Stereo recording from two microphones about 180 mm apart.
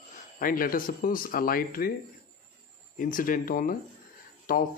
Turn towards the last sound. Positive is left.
turn(degrees=50)  # may be behind; listen again after turning